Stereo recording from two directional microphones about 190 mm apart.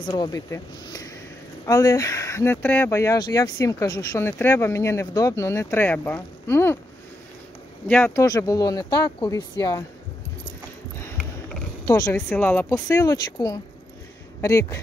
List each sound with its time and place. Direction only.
0.0 s speech: 25° left (ahead or behind)
7.9 s speech: 15° left (ahead or behind)
11.8 s speech: 15° left (ahead or behind)